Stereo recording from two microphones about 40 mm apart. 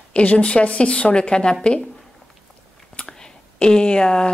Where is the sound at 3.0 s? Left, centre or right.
Left.